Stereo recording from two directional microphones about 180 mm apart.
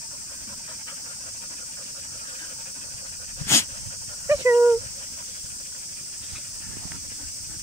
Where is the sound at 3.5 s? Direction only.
15° left (ahead or behind).